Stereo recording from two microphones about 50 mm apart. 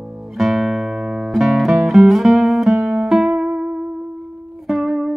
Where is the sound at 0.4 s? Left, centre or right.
Centre.